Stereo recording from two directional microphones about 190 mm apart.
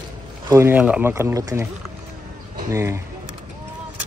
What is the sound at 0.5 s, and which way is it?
Speech, 15° right (ahead or behind).